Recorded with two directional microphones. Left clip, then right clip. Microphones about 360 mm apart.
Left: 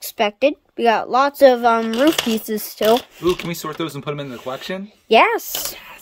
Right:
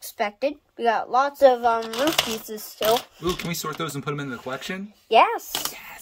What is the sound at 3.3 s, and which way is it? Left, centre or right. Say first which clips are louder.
Speech: left 4 dB; centre.